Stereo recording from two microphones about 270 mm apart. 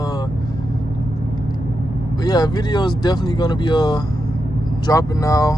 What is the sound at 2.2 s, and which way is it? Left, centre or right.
Speech, centre.